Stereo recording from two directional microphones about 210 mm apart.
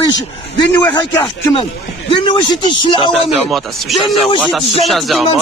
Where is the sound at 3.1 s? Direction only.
Centre (ahead or behind).